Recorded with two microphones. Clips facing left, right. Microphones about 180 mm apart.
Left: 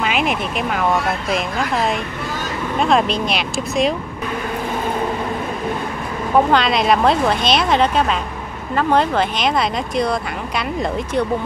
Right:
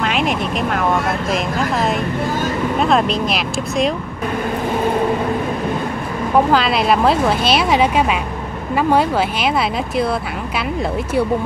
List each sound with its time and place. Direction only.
0.0 s vehicle: 5° left (ahead or behind)
2.8 s speech: centre (ahead or behind)
6.5 s speech: 5° right (ahead or behind)